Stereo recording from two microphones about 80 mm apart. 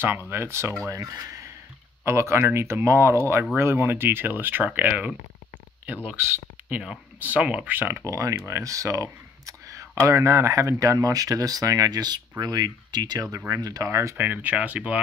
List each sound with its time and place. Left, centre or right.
0.3 s speech: right
1.0 s speech: right; by 5.1 s centre
7.2 s speech: centre
8.1 s speech: right
13.8 s speech: right; by 15.0 s centre